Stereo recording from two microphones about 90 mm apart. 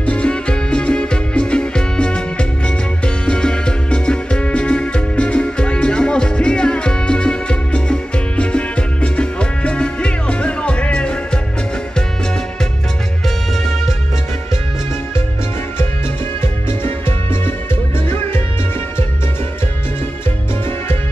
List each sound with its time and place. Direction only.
0.0 s music: 10° left (ahead or behind)
16.3 s music: 25° left (ahead or behind)